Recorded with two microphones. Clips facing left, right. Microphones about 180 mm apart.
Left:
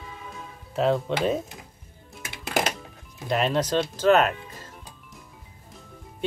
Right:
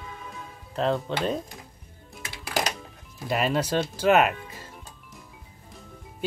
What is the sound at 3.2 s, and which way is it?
Speech, 5° right (ahead or behind).